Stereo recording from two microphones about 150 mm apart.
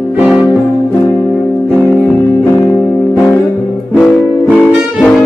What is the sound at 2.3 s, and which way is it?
Music, 20° left (ahead or behind).